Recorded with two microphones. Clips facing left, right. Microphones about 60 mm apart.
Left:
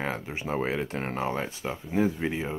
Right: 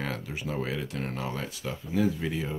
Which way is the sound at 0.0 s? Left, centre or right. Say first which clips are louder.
Left 2 dB; left.